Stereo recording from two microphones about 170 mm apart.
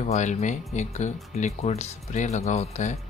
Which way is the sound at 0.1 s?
45° left (ahead or behind).